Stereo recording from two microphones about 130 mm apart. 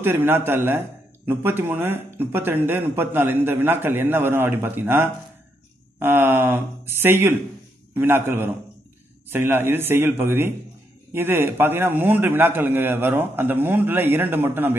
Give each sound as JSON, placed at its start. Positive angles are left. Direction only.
{"t": 0.0, "sound": "a man's voice", "side_deg": -15}